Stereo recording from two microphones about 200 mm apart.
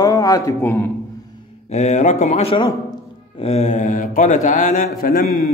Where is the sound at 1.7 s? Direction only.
35° left (ahead or behind).